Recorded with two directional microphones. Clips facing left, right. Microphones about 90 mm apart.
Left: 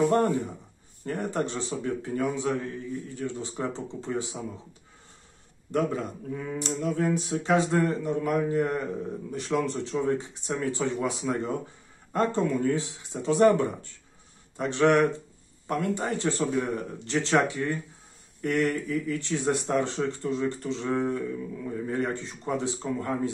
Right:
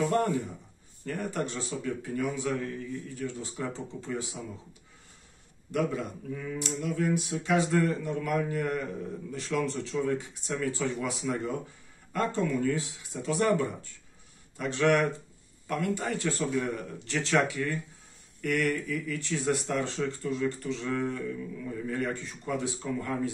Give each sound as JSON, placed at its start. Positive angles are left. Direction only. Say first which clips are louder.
{"t": 1.0, "sound": "a man's voice", "louder": "left 3 dB", "side_deg": 30}
{"t": 5.7, "sound": "a man's voice", "louder": "left 3 dB", "side_deg": 35}